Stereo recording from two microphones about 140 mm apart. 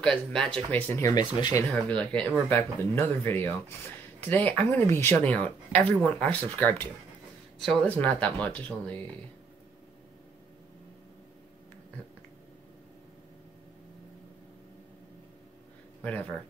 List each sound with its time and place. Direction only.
0.0 s speech: 5° left (ahead or behind)
1.1 s speech: 30° left (ahead or behind)
1.7 s speech: 5° left (ahead or behind)
16.0 s speech: 10° left (ahead or behind)